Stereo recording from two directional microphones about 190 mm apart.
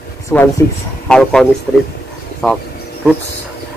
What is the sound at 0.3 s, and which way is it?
Speech, 10° left (ahead or behind).